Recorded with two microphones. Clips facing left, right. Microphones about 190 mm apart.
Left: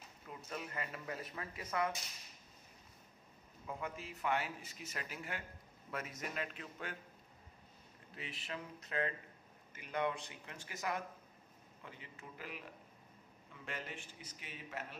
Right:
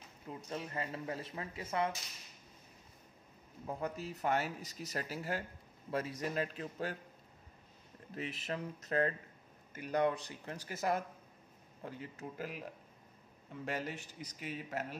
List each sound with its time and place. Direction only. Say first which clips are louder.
0.3 s speech: right 4 dB; 30° right (ahead or behind)
3.6 s speech: right 5 dB; 40° right (ahead or behind)
8.1 s speech: right 7 dB; 40° right (ahead or behind)
13.7 s speech: right 7 dB; 40° right (ahead or behind)